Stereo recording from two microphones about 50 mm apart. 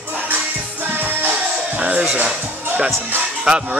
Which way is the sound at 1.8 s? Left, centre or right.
Right.